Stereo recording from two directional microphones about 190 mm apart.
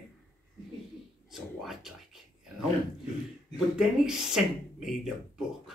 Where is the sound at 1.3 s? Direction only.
Centre (ahead or behind).